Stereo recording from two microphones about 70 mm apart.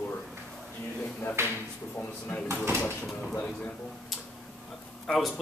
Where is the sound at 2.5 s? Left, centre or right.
Right.